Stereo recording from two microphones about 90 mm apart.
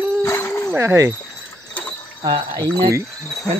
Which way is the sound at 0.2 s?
30° left (ahead or behind).